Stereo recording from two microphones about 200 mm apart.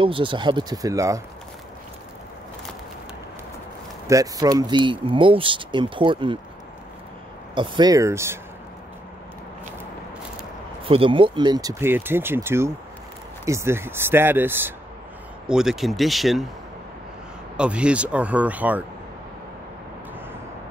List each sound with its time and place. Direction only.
0.0 s speech: 25° right (ahead or behind)
4.1 s speech: 15° right (ahead or behind)
7.5 s speech: 25° right (ahead or behind)
10.9 s speech: 25° right (ahead or behind); by 16.4 s centre (ahead or behind)
17.6 s speech: 5° right (ahead or behind)